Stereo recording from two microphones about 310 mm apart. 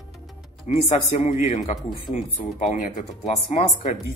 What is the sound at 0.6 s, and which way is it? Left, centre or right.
Speech, centre.